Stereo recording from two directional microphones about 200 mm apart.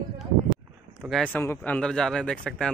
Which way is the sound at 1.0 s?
Centre (ahead or behind).